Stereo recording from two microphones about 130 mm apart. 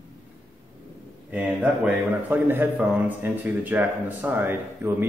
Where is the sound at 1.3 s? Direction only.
10° right (ahead or behind).